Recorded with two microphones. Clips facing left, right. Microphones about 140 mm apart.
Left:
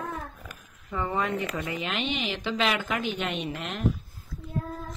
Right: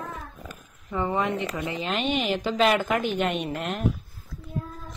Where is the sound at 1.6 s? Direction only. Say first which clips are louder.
Right 3 dB; 30° right (ahead or behind); by 3.8 s 50° right (ahead or behind).